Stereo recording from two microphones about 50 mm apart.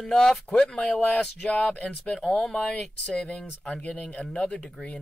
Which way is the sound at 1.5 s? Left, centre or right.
Left.